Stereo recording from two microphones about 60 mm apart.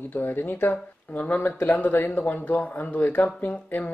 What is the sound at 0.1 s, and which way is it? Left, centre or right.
Speech, left.